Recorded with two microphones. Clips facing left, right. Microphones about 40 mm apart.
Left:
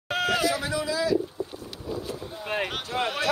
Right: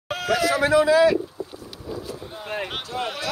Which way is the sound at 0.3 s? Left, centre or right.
Right.